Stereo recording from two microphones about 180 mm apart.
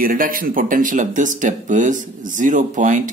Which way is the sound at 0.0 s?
50° right (ahead or behind).